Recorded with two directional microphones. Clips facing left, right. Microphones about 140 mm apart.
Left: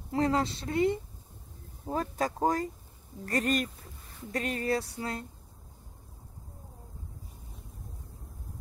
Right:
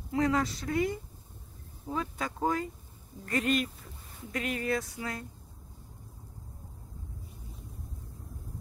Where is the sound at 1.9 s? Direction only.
40° left (ahead or behind).